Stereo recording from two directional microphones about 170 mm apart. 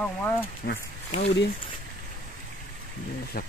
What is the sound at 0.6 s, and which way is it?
Speech, 90° left.